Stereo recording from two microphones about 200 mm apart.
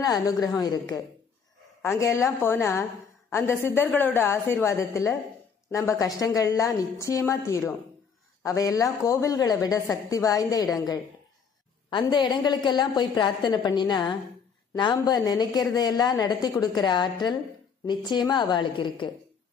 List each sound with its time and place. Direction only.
0.0 s a woman's voice: 15° left (ahead or behind)